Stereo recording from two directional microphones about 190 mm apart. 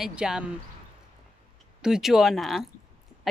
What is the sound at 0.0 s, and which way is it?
Speech, 5° right (ahead or behind).